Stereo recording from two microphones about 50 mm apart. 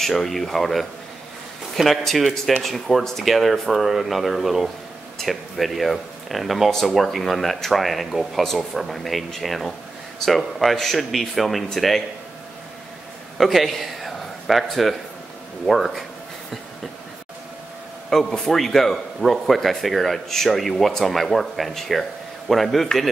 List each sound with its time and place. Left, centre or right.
0.0 s speech: centre
13.4 s speech: centre
18.1 s speech: centre